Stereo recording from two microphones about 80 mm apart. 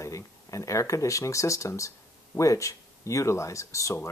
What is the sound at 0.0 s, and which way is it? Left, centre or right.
Speech, left.